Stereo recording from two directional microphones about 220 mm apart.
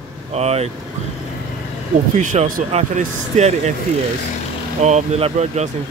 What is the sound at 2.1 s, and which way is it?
Speech, 35° right (ahead or behind).